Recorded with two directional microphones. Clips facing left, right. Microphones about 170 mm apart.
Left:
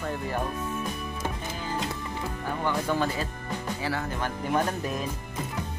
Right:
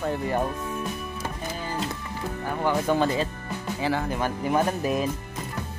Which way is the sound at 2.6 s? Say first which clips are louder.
Right 4 dB; 20° right (ahead or behind).